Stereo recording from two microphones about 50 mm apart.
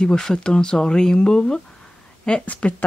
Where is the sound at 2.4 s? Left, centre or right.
Left.